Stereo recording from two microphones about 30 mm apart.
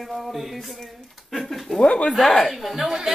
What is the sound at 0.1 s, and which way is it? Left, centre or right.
Speech, centre.